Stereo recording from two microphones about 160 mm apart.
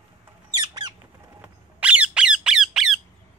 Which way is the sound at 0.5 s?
25° right (ahead or behind).